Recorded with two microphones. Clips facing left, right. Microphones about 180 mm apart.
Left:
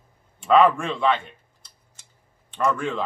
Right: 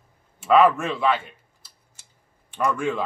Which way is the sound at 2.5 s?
10° right (ahead or behind).